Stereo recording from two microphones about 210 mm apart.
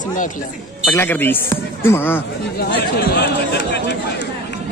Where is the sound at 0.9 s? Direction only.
10° left (ahead or behind).